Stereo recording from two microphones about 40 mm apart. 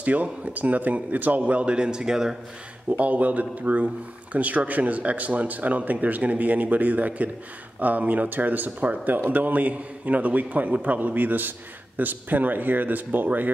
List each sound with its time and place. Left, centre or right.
0.0 s speech: right
1.4 s a man's voice: right
2.9 s a man's voice: right